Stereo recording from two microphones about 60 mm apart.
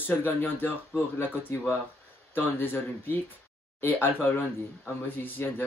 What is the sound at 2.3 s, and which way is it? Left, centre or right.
Speech, left.